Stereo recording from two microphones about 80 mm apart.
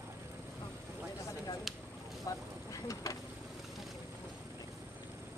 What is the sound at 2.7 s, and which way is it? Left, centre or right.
Vehicle, left.